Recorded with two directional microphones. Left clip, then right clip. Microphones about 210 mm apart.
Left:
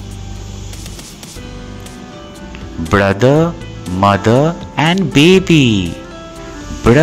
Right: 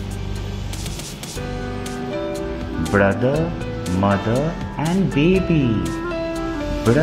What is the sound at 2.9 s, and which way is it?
Speech, 25° left (ahead or behind).